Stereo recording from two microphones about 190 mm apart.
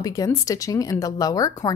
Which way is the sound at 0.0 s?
20° left (ahead or behind).